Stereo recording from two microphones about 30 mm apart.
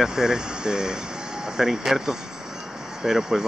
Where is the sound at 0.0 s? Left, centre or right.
Centre.